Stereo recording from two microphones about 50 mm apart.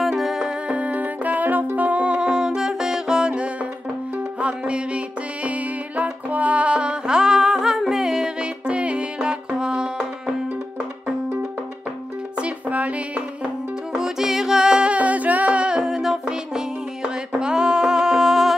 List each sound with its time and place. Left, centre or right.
0.0 s music: centre
0.7 s music: right
12.4 s music: right
13.9 s music: centre